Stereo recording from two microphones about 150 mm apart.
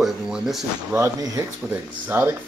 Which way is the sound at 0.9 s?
20° right (ahead or behind).